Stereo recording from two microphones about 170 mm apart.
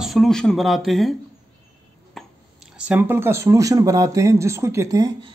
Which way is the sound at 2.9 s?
10° right (ahead or behind).